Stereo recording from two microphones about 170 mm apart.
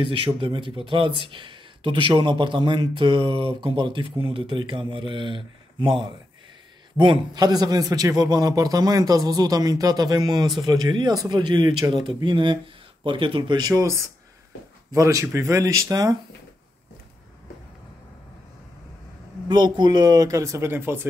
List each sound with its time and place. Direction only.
0.0 s speech: 30° right (ahead or behind)
19.4 s speech: 25° right (ahead or behind)